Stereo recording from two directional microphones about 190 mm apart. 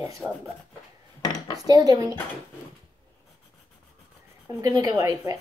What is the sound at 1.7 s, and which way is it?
Speech, 20° right (ahead or behind).